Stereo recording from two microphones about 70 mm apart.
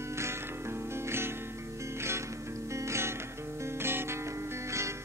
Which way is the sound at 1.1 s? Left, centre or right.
Right.